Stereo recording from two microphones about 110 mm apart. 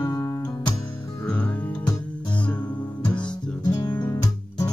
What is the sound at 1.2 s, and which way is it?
Music, 15° left (ahead or behind).